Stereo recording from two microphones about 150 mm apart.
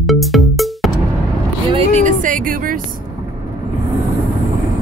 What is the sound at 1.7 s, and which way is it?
Vehicle, 50° right (ahead or behind).